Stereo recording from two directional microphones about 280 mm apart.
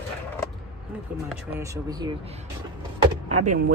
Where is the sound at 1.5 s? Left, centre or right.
Centre.